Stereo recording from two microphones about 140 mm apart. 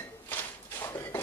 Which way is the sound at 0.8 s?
20° left (ahead or behind).